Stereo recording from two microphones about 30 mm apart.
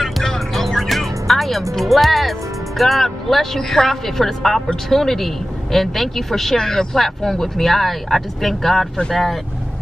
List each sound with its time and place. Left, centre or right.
0.0 s music: centre
0.7 s music: centre
3.0 s speech: centre